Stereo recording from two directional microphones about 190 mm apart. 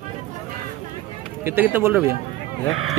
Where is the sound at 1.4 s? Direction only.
10° right (ahead or behind).